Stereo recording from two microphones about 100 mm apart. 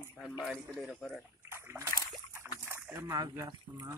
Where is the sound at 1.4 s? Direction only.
25° right (ahead or behind).